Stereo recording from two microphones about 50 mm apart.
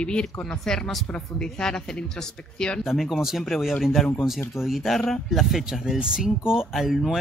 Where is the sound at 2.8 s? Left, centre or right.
Centre.